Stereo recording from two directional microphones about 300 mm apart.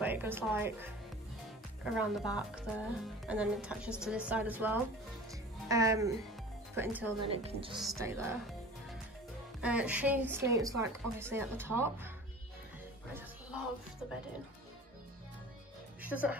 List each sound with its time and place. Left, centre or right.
0.0 s speech: centre
2.0 s a woman's voice: centre
7.2 s speech: centre
7.7 s speech: centre
9.6 s a woman's voice: centre
16.0 s a woman's voice: centre